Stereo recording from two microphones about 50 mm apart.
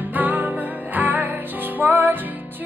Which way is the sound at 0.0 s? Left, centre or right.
Right.